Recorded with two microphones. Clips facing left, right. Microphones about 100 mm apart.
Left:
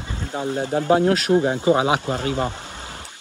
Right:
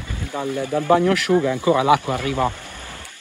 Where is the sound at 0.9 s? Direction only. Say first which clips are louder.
Right 1 dB; 50° right (ahead or behind).